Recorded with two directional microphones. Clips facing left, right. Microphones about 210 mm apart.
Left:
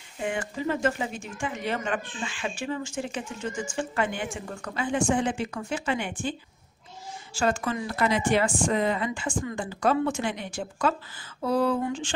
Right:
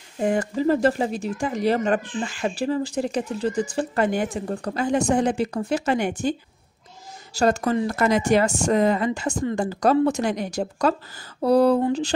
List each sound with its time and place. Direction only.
0.2 s a woman's voice: 40° right (ahead or behind)
7.3 s a woman's voice: 40° right (ahead or behind)